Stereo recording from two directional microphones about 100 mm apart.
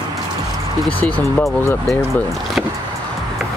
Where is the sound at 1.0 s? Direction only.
15° left (ahead or behind).